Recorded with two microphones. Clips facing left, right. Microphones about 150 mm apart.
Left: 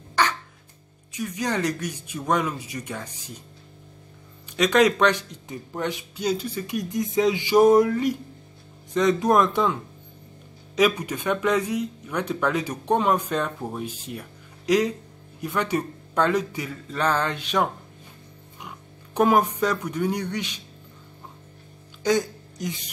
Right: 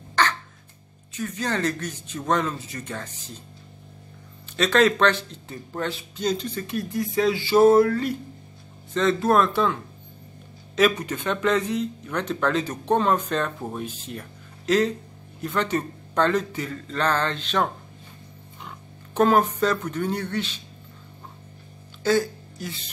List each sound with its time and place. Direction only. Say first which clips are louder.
0.1 s crow: even; 10° left (ahead or behind)
1.1 s speech: left 1 dB; 15° left (ahead or behind)
4.6 s speech: left 1 dB; 15° left (ahead or behind)
10.8 s speech: even; 10° left (ahead or behind)
19.1 s speech: even; 15° left (ahead or behind)
22.0 s speech: right 1 dB; 15° left (ahead or behind)